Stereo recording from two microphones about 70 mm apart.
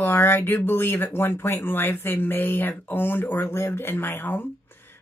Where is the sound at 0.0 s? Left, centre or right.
Left.